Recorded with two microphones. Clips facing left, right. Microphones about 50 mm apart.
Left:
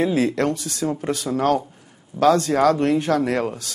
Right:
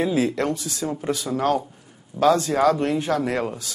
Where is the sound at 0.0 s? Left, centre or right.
Left.